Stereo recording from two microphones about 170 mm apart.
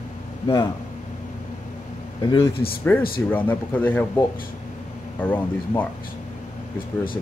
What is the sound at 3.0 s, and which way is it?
Speech, 60° left (ahead or behind).